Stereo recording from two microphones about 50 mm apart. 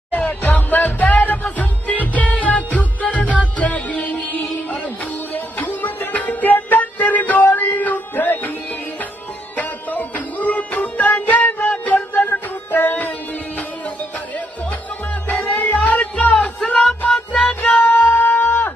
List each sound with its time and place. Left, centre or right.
0.3 s music: left
9.6 s music: left
12.1 s music: left
15.4 s music: left